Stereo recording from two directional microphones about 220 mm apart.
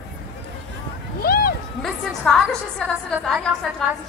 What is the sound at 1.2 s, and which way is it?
Speech, 45° left (ahead or behind).